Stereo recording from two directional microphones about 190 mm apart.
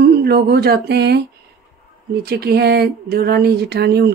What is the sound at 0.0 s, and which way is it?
Speech, 55° right (ahead or behind).